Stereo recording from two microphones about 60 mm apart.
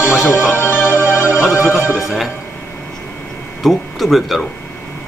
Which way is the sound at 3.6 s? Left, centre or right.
Centre.